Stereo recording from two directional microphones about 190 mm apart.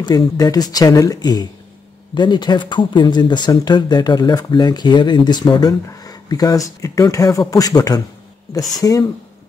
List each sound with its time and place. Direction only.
0.0 s speech: 20° left (ahead or behind)